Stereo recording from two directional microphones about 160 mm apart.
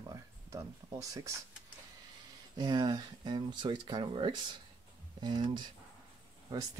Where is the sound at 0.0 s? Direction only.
20° right (ahead or behind).